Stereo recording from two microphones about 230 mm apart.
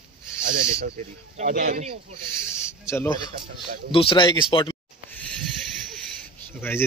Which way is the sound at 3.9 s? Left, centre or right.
Left.